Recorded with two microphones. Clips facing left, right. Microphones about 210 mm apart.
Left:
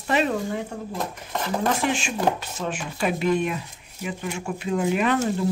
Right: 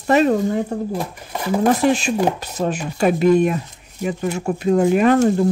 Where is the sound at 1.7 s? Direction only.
40° right (ahead or behind).